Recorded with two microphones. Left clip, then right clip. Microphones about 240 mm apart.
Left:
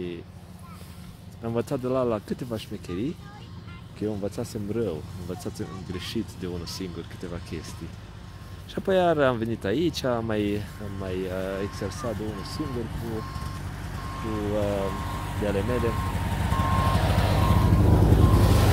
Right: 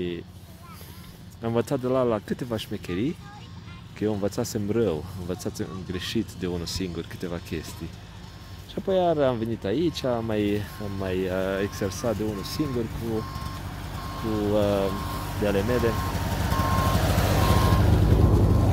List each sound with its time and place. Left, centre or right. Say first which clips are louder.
1.4 s speech: right 3 dB; centre
8.7 s speech: left 1 dB; centre; by 12.1 s right
12.1 s vehicle: right 4 dB; right